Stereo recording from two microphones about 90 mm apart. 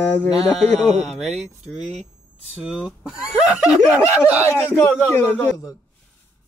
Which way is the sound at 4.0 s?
35° left (ahead or behind).